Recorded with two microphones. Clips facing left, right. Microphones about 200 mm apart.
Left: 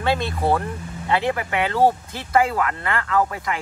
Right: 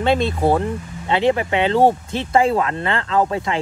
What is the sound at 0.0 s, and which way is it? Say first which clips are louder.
Speech: right 5 dB; 20° right (ahead or behind).